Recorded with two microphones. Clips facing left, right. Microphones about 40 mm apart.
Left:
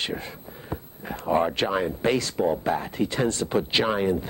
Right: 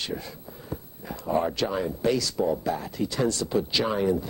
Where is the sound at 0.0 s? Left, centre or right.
Left.